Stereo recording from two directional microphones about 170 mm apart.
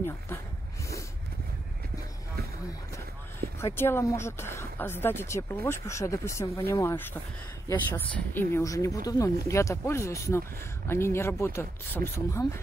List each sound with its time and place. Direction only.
3.6 s speech: 15° left (ahead or behind)